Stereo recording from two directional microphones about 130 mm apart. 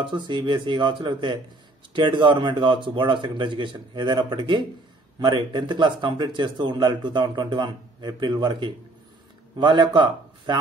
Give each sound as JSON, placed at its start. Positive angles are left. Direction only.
{"t": 0.0, "sound": "speech", "side_deg": -40}